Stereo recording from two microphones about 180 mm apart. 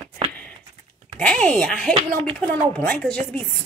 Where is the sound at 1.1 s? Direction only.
5° left (ahead or behind).